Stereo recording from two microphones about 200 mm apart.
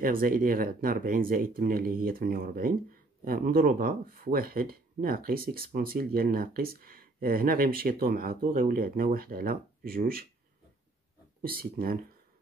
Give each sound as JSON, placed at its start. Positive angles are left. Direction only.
{"t": 0.0, "sound": "speech", "side_deg": -45}
{"t": 11.4, "sound": "speech", "side_deg": -45}